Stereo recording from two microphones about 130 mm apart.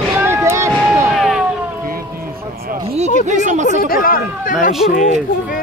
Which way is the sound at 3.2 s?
65° right (ahead or behind).